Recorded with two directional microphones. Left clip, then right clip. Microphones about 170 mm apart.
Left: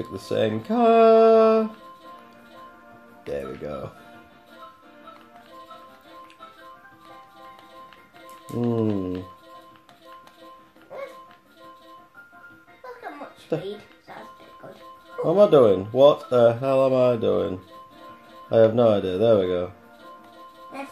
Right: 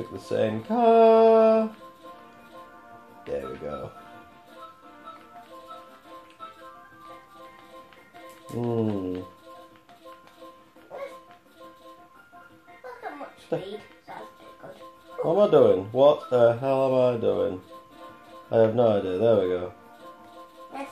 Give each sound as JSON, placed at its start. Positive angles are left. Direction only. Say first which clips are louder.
{"t": 0.1, "sound": "speech", "louder": "left 2 dB", "side_deg": 60}
{"t": 3.3, "sound": "speech", "louder": "left 1 dB", "side_deg": 55}
{"t": 8.5, "sound": "speech", "louder": "left 3 dB", "side_deg": 45}
{"t": 13.5, "sound": "speech", "louder": "left 2 dB", "side_deg": 60}
{"t": 15.2, "sound": "speech", "louder": "left 3 dB", "side_deg": 60}
{"t": 18.5, "sound": "speech", "louder": "left 3 dB", "side_deg": 60}